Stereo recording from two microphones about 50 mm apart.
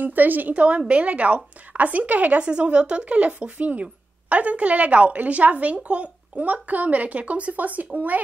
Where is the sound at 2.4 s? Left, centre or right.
Right.